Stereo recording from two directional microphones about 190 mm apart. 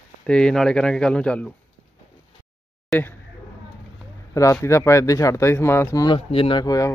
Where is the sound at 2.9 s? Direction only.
10° left (ahead or behind).